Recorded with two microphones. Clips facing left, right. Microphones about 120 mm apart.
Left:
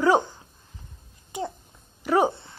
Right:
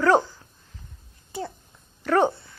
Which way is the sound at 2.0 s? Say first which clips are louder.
Right 1 dB; 10° left (ahead or behind).